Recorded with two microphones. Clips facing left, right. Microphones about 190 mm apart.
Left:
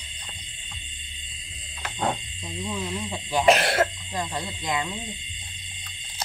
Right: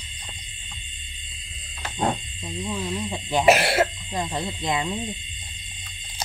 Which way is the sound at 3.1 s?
20° right (ahead or behind).